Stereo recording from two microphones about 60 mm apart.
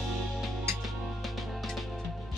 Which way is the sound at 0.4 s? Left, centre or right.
Centre.